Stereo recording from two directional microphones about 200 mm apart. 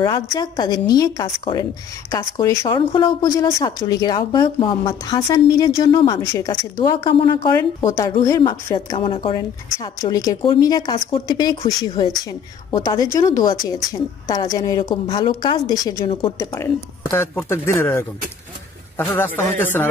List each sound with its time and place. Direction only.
0.0 s a woman's voice: 20° left (ahead or behind)
16.1 s speech: 25° left (ahead or behind)
17.1 s a woman's voice: 15° left (ahead or behind)